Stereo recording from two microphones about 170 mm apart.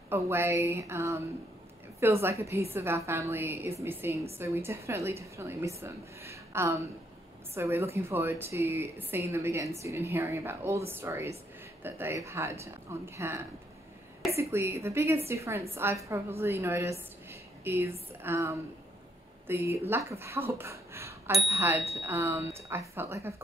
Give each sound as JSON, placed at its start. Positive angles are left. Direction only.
{"t": 0.1, "sound": "a woman's voice", "side_deg": -15}